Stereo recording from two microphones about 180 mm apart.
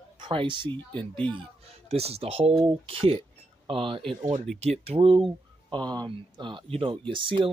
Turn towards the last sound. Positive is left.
turn(degrees=-30)  # may be behind; listen again after turning